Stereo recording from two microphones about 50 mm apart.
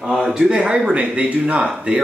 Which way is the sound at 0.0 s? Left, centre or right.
Centre.